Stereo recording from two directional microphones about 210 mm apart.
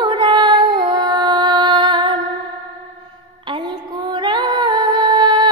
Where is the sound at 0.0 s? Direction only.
20° right (ahead or behind).